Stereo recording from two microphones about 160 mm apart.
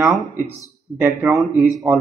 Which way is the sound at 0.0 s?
20° right (ahead or behind).